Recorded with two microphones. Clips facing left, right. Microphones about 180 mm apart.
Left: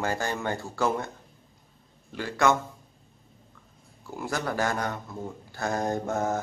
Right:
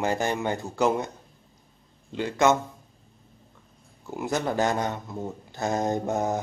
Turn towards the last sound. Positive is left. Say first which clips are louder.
# right 2 dB
turn(degrees=-20)  # may be behind; listen again after turning